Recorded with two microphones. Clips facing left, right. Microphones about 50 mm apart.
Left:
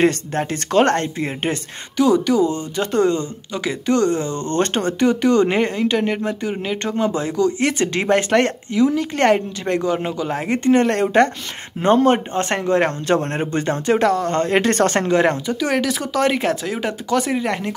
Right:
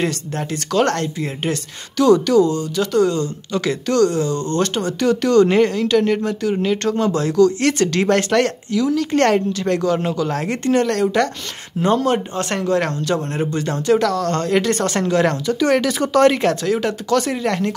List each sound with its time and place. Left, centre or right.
0.0 s a woman's voice: left
2.0 s a woman's voice: centre
3.5 s a woman's voice: centre; by 5.0 s left
5.0 s a woman's voice: centre
15.6 s speech: centre